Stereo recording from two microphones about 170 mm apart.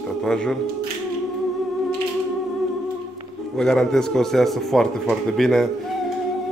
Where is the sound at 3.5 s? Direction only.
5° left (ahead or behind).